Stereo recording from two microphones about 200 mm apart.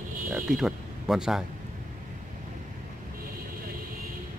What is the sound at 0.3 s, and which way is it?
Speech, 5° right (ahead or behind).